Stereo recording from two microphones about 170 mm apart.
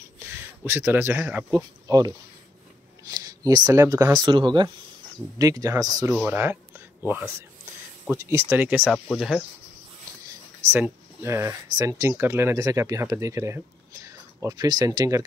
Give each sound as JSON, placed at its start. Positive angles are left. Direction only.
{"t": 0.3, "sound": "speech", "side_deg": -15}
{"t": 3.1, "sound": "a sound", "side_deg": -20}
{"t": 3.8, "sound": "speech", "side_deg": -20}
{"t": 8.1, "sound": "speech", "side_deg": -15}
{"t": 10.7, "sound": "speech", "side_deg": -15}